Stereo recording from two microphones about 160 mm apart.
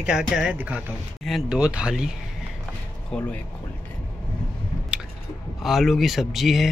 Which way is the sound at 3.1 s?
10° left (ahead or behind).